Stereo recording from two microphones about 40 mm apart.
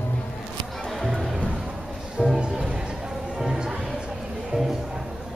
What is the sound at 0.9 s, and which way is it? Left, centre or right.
Music, centre.